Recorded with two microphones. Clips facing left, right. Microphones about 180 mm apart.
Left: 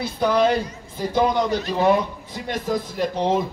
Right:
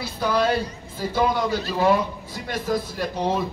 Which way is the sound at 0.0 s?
20° left (ahead or behind).